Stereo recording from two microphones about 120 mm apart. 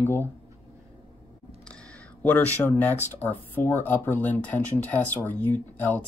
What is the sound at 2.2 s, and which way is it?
Speech, 15° left (ahead or behind).